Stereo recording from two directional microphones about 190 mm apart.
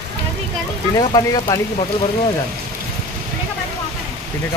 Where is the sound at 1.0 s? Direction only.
20° left (ahead or behind).